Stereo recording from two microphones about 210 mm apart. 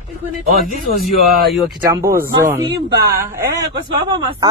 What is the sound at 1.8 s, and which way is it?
Speech, 15° right (ahead or behind).